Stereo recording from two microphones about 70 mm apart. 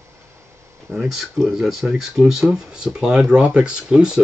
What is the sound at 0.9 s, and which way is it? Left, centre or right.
Speech, centre.